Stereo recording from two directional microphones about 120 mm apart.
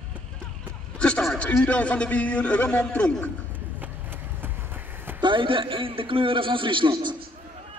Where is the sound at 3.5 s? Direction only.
15° right (ahead or behind).